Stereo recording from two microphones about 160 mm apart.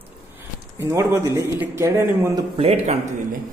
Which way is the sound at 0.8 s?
15° right (ahead or behind).